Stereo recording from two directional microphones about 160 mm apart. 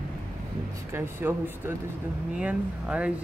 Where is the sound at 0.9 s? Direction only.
15° right (ahead or behind).